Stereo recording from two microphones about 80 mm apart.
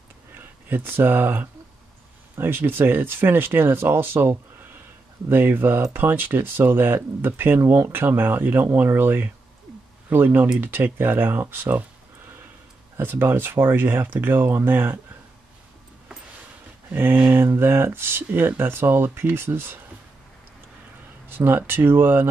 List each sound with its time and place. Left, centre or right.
0.3 s speech: right
12.9 s speech: right
16.9 s speech: right
21.3 s speech: right